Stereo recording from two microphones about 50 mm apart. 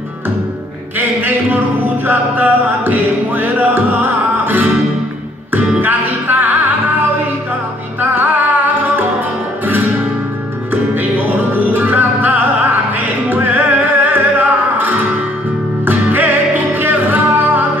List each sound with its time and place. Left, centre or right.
0.9 s a man's voice: right
2.0 s music: right
5.8 s music: right
8.0 s music: right
11.5 s music: right